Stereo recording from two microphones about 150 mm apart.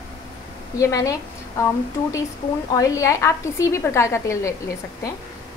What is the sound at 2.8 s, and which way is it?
A woman's voice, 20° left (ahead or behind).